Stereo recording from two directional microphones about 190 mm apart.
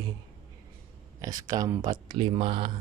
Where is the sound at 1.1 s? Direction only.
20° right (ahead or behind).